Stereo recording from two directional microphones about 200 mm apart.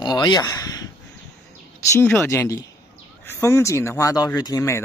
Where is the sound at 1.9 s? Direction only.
10° left (ahead or behind).